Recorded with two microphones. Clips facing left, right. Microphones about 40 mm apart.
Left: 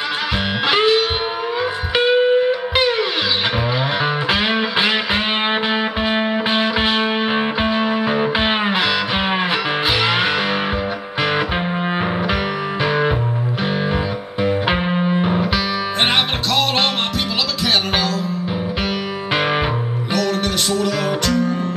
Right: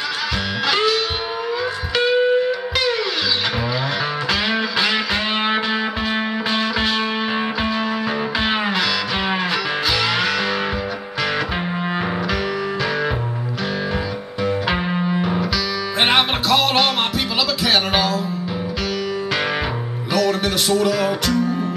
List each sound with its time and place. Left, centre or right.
0.7 s music: left
4.3 s music: left
14.4 s music: left
16.1 s music: centre
20.2 s music: centre